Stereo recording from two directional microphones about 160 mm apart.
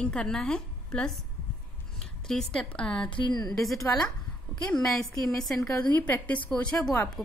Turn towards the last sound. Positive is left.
turn(degrees=5)  # may be behind; listen again after turning